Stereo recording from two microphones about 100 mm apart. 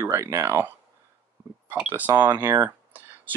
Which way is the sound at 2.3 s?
20° right (ahead or behind).